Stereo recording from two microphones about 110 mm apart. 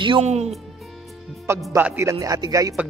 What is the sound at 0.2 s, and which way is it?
Speech, 85° right.